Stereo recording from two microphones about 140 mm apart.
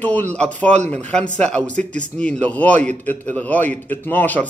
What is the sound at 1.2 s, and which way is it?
Speech, 50° right (ahead or behind).